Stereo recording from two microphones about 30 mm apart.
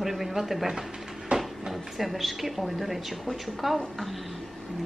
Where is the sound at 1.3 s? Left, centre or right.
Right.